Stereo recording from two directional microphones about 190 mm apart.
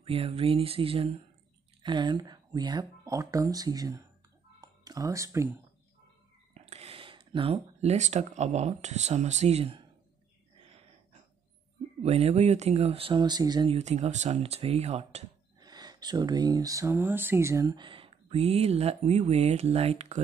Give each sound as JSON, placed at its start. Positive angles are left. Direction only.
{"t": 0.0, "sound": "speech", "side_deg": -30}
{"t": 4.6, "sound": "music", "side_deg": -20}
{"t": 6.5, "sound": "speech", "side_deg": -35}
{"t": 12.0, "sound": "speech", "side_deg": -35}
{"t": 13.7, "sound": "speech", "side_deg": -35}
{"t": 15.6, "sound": "speech", "side_deg": -20}